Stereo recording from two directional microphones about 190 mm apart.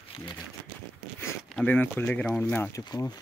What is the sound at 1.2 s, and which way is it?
Speech, 5° left (ahead or behind).